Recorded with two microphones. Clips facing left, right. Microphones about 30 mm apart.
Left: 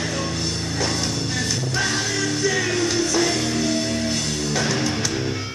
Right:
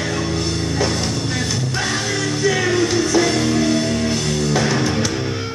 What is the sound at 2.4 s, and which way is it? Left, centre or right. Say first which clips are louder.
Music: right 6 dB; centre.